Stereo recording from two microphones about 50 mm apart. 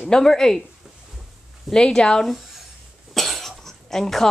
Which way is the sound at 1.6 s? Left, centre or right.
Centre.